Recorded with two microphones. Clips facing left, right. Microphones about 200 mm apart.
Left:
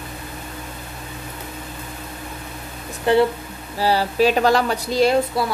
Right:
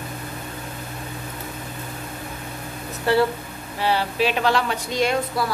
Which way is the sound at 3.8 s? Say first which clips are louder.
Left 4 dB; 40° left (ahead or behind).